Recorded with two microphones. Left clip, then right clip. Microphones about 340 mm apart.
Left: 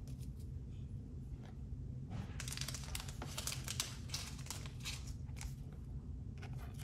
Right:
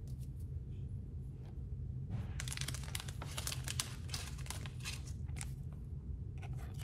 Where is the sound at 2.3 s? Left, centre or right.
Right.